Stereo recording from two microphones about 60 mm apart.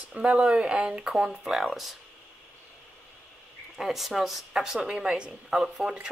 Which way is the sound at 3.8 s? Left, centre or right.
Centre.